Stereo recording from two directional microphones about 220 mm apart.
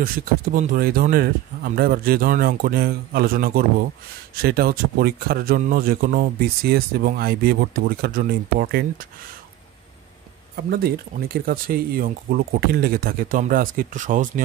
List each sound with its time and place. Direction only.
0.0 s speech: 40° right (ahead or behind)
10.5 s speech: 45° right (ahead or behind)